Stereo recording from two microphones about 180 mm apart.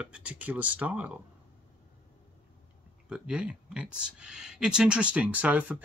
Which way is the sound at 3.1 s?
5° right (ahead or behind).